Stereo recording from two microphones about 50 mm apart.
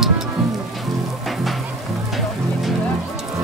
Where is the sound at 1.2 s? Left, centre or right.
Centre.